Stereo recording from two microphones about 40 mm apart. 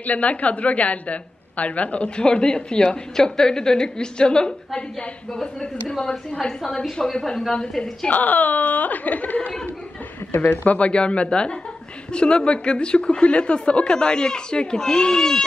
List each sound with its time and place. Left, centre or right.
0.0 s a woman's voice: left
5.9 s a woman's voice: centre
8.1 s a woman's voice: left
10.9 s a woman's voice: left